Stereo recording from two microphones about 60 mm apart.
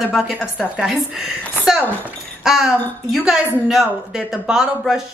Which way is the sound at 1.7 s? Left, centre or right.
Centre.